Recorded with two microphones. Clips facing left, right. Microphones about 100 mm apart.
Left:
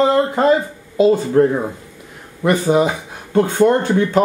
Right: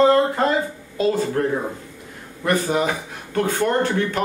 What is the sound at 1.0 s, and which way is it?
Speech, 20° left (ahead or behind).